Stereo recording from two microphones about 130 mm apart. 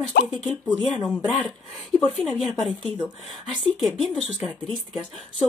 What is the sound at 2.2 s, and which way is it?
Speech, centre (ahead or behind).